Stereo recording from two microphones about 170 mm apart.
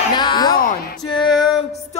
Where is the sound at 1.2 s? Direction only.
25° left (ahead or behind).